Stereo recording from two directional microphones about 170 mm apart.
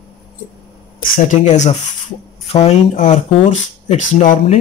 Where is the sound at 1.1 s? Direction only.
45° left (ahead or behind).